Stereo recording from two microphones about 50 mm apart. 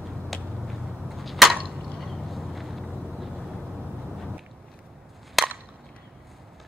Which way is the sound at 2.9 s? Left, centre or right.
Right.